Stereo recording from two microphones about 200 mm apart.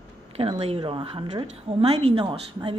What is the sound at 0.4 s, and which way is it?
A woman's voice, 30° right (ahead or behind).